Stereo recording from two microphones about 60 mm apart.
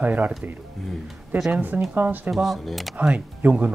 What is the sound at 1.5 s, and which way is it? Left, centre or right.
Speech, right.